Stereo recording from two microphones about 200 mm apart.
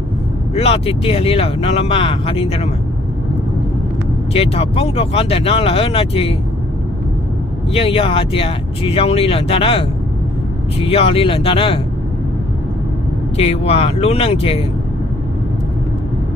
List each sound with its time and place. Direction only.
0.6 s speech: 30° left (ahead or behind)
4.3 s speech: 30° left (ahead or behind)
7.7 s speech: 30° left (ahead or behind)
13.4 s speech: 30° left (ahead or behind)